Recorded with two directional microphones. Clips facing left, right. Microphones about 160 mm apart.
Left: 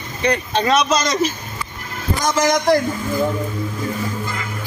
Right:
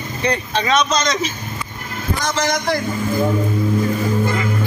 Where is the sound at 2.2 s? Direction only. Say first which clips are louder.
Left 5 dB; 45° left (ahead or behind).